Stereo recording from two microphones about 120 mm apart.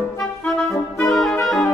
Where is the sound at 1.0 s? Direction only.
Centre (ahead or behind).